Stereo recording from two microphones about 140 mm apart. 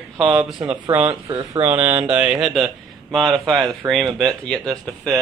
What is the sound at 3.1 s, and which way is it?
Speech, centre (ahead or behind).